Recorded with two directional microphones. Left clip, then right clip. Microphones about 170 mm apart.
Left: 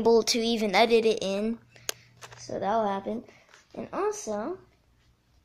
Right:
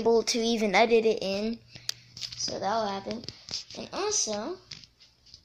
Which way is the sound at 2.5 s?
35° left (ahead or behind).